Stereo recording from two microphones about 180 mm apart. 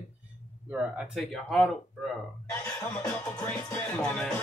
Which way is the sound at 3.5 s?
10° left (ahead or behind).